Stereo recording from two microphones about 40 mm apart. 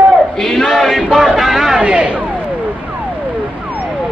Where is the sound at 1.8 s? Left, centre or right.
Right.